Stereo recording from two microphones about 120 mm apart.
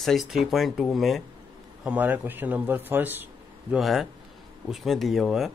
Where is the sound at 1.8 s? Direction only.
10° right (ahead or behind).